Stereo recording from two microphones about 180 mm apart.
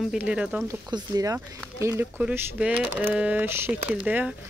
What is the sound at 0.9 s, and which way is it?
Speech, 20° right (ahead or behind).